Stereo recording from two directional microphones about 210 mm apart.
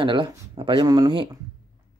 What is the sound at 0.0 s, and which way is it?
Speech, 25° right (ahead or behind).